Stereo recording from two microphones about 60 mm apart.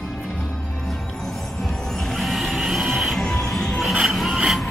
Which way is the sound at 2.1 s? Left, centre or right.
Centre.